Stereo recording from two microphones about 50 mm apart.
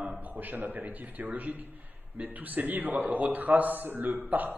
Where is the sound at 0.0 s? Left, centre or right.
Right.